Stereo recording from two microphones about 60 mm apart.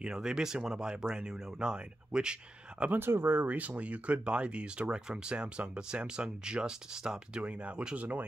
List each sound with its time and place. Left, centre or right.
0.0 s speech: centre
2.9 s speech: right; by 7.4 s centre
7.4 s speech: right